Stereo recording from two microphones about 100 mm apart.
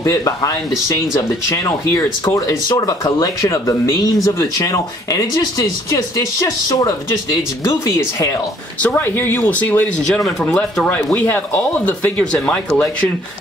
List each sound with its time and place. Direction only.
0.0 s speech: 35° left (ahead or behind)
8.8 s speech: 20° left (ahead or behind)